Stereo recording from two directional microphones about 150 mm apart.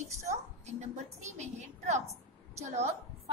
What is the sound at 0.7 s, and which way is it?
Music, 50° right (ahead or behind).